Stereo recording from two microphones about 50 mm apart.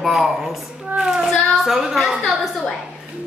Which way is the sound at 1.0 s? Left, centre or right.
Centre.